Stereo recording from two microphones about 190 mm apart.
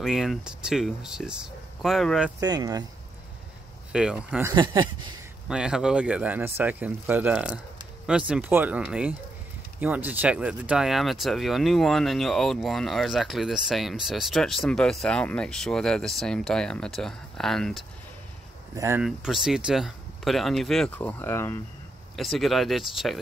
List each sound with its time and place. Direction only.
0.0 s speech: centre (ahead or behind)
2.4 s speech: 20° right (ahead or behind)
3.9 s speech: 5° right (ahead or behind)
4.5 s speech: 25° right (ahead or behind)
5.5 s speech: 5° right (ahead or behind)
18.8 s speech: 15° right (ahead or behind)
19.0 s speech: centre (ahead or behind)
22.1 s speech: centre (ahead or behind)